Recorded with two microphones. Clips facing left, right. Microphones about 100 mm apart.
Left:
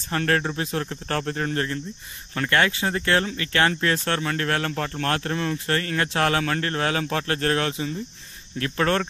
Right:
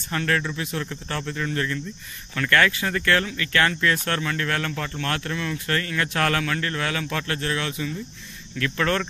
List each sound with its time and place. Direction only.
0.1 s speech: 40° left (ahead or behind)
6.5 s speech: 40° left (ahead or behind)
7.3 s speech: 45° left (ahead or behind)
8.5 s speech: 35° left (ahead or behind)